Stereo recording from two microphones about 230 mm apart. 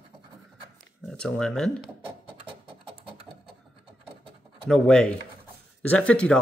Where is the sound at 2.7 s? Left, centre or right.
Right.